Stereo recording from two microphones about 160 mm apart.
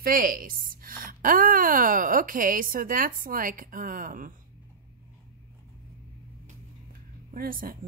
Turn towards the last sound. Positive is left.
turn(degrees=-65)  # may be behind; listen again after turning